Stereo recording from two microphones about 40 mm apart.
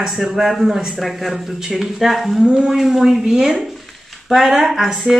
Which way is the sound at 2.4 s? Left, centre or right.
Right.